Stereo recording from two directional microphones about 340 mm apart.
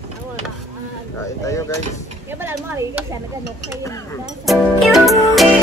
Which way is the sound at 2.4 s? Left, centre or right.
Centre.